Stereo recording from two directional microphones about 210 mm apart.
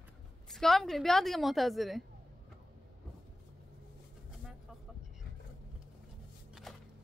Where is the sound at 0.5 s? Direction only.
Centre (ahead or behind).